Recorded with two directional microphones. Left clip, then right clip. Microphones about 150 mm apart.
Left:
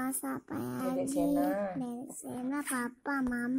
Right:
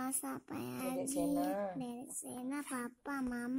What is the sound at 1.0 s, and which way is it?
A woman's voice, 20° right (ahead or behind).